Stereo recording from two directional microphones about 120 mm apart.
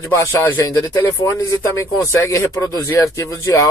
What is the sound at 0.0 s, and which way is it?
Speech, 20° left (ahead or behind).